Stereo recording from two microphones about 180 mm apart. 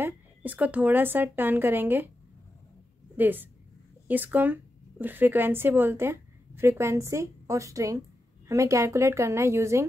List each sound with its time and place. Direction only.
0.0 s a woman's voice: 10° right (ahead or behind)
3.2 s a woman's voice: 10° right (ahead or behind)